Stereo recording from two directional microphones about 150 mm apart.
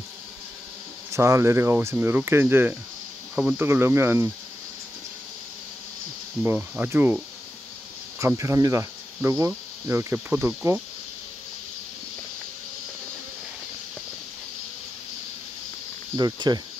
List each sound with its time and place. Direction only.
1.1 s speech: 20° right (ahead or behind)
6.4 s speech: 10° right (ahead or behind)
8.4 s cricket: 20° right (ahead or behind)
10.4 s speech: 15° right (ahead or behind)
16.2 s cricket: 25° right (ahead or behind)